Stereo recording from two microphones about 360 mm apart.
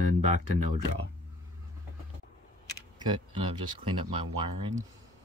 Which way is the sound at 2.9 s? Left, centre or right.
Centre.